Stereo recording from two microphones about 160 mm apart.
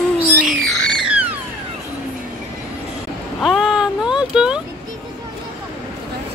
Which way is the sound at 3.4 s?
Centre (ahead or behind).